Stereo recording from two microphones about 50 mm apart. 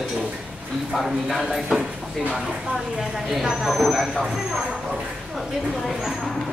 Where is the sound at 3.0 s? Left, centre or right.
Centre.